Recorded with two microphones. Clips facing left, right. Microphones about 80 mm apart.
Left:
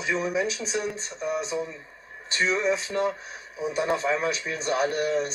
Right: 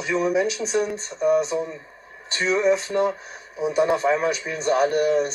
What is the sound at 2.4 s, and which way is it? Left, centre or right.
Speech, centre.